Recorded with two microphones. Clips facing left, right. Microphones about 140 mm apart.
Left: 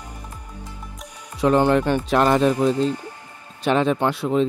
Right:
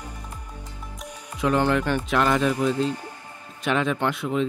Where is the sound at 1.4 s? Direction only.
35° left (ahead or behind).